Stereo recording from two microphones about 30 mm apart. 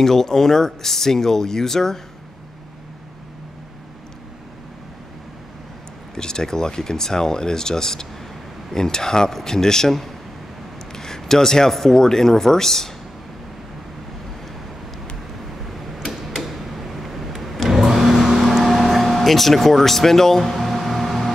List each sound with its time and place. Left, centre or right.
0.0 s speech: centre
6.1 s speech: left
10.9 s a sound: centre
11.9 s speech: centre
15.6 s tick-tock: centre
16.4 s drawer open or close: centre
17.7 s car: centre
18.1 s music: centre
18.6 s speech: centre
20.5 s music: centre